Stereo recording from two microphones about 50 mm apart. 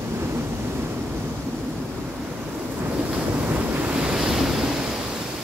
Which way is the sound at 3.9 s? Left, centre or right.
Centre.